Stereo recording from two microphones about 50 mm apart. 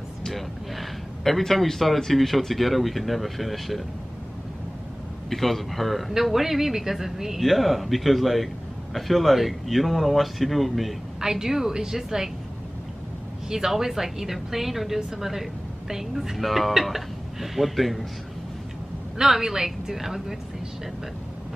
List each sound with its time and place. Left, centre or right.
0.2 s speech: centre
5.3 s speech: centre
11.1 s a woman's voice: centre
13.5 s a woman's voice: centre
19.1 s a woman's voice: centre